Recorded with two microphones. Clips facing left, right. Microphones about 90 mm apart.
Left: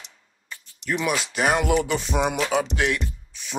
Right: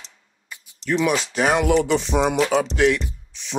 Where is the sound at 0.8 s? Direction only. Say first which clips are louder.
Right 4 dB; 5° left (ahead or behind).